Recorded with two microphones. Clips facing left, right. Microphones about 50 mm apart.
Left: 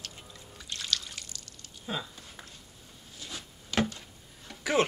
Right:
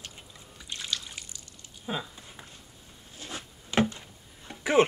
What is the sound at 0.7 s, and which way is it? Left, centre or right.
Trickle, centre.